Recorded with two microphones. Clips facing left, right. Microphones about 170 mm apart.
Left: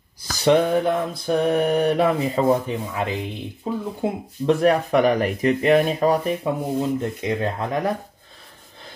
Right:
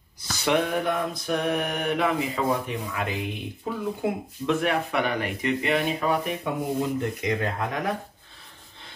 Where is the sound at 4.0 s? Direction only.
35° left (ahead or behind).